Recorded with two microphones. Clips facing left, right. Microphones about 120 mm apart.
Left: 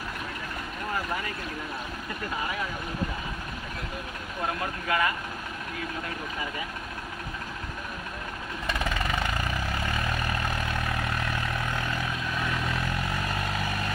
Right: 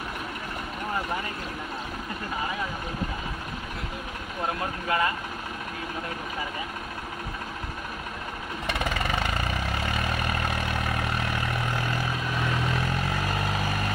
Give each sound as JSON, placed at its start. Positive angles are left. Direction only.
{"t": 4.8, "sound": "speech", "side_deg": -30}
{"t": 11.1, "sound": "vehicle", "side_deg": -25}